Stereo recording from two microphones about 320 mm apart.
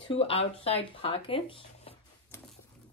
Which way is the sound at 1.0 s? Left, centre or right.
Centre.